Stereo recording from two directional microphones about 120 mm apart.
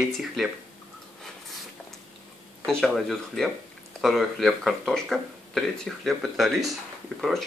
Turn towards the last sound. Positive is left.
turn(degrees=0)  # may be behind; listen again after turning